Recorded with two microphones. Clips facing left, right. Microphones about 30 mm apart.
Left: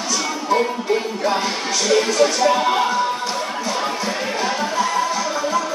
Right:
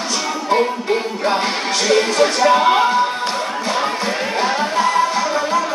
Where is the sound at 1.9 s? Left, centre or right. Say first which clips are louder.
Right 1 dB; right.